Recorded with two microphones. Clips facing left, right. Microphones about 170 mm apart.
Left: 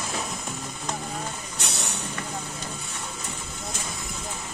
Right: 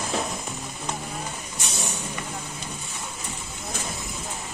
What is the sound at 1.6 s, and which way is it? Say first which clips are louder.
Vehicle: right 2 dB; 65° left (ahead or behind).